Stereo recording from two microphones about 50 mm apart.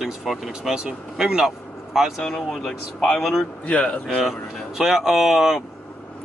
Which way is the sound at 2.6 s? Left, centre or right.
Centre.